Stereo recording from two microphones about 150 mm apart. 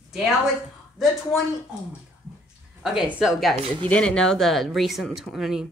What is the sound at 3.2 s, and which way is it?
Speech, centre (ahead or behind).